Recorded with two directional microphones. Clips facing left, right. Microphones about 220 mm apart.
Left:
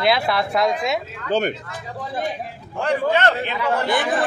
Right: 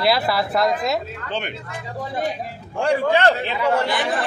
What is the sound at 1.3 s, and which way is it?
Speech, 40° left (ahead or behind).